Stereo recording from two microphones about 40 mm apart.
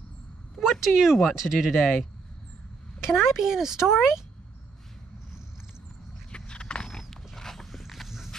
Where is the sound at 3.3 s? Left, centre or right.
Centre.